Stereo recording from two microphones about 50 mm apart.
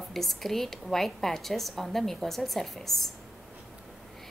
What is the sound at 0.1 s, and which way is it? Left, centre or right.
A woman's voice, centre.